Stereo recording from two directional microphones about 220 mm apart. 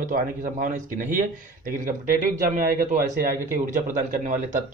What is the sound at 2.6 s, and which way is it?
Speech, 40° right (ahead or behind).